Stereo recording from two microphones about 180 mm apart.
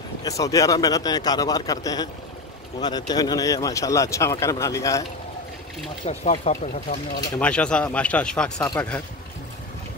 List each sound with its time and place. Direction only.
0.2 s a man's voice: 20° left (ahead or behind)
6.0 s speech: 35° left (ahead or behind)
7.3 s speech: 5° left (ahead or behind)